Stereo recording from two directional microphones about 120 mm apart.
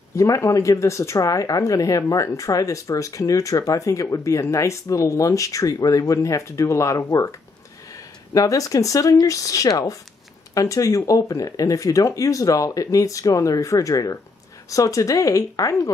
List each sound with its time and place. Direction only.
0.1 s speech: 25° left (ahead or behind)